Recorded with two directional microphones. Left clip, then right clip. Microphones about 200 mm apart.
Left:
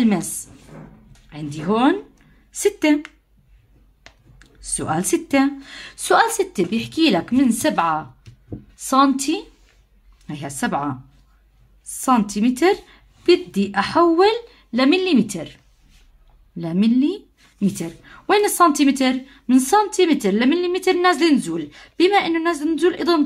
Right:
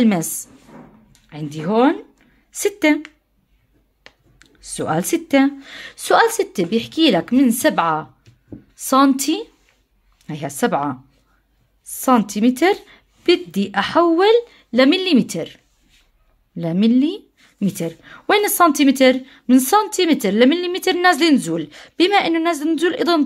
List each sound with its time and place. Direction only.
0.0 s speech: 40° right (ahead or behind)
4.4 s speech: 30° right (ahead or behind)